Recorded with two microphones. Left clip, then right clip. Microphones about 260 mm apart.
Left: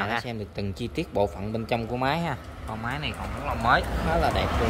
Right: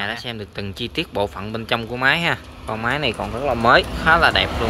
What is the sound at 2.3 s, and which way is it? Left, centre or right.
Speech, right.